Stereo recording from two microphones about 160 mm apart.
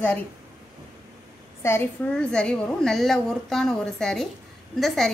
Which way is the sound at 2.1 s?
5° left (ahead or behind).